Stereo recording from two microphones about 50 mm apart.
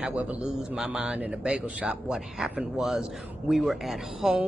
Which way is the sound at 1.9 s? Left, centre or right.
Centre.